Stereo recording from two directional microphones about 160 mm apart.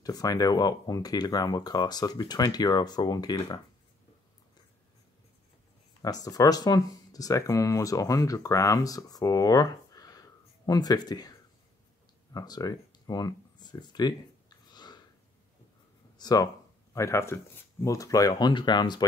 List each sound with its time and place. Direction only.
0.0 s speech: 25° left (ahead or behind)
6.0 s speech: 25° left (ahead or behind)
12.4 s a sound: 25° left (ahead or behind)
16.2 s speech: 25° left (ahead or behind)